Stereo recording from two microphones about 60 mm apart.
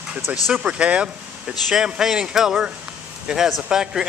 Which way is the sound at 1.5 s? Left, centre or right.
Centre.